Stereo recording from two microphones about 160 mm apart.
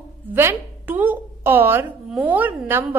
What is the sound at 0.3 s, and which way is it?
A woman's voice, 15° right (ahead or behind).